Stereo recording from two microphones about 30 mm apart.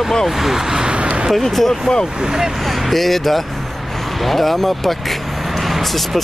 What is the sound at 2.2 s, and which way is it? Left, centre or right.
Speech, right.